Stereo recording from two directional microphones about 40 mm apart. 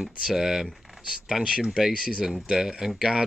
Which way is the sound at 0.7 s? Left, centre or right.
Centre.